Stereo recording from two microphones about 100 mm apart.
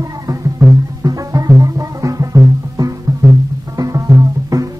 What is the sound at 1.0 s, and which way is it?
Music, 35° right (ahead or behind).